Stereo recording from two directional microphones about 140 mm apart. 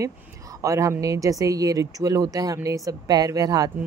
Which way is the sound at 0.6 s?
20° right (ahead or behind).